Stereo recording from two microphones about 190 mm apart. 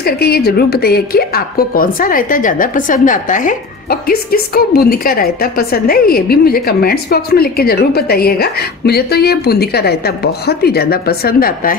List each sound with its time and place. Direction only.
0.0 s a woman's voice: 55° left (ahead or behind)